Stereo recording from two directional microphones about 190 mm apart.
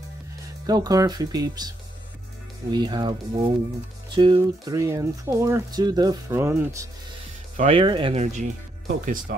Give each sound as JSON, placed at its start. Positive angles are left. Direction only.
{"t": 0.7, "sound": "speech", "side_deg": -20}
{"t": 2.7, "sound": "speech", "side_deg": -25}
{"t": 7.5, "sound": "speech", "side_deg": -35}
{"t": 9.0, "sound": "speech", "side_deg": -45}